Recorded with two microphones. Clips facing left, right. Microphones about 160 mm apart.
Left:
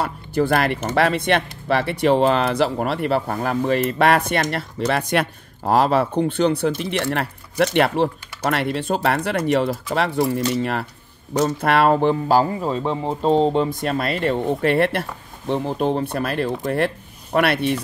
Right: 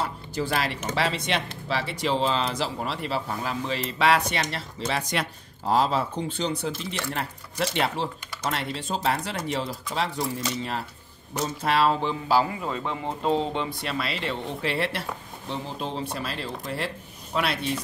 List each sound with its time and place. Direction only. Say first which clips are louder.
0.0 s speech: left 8 dB; 55° left (ahead or behind)